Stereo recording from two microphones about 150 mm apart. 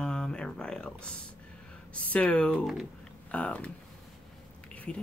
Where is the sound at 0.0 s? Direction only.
5° left (ahead or behind).